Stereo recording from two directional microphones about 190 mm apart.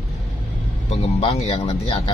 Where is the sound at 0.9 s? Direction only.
30° left (ahead or behind).